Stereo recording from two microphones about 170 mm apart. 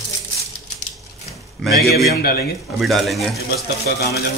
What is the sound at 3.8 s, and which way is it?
Speech, 70° left (ahead or behind).